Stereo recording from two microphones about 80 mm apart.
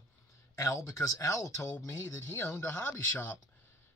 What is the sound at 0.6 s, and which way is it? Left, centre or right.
Speech, left.